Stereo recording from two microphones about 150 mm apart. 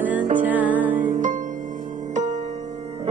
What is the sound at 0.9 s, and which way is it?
Music, 60° right (ahead or behind).